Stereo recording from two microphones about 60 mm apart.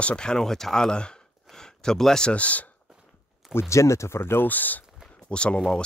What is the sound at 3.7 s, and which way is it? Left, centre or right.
Speech, left.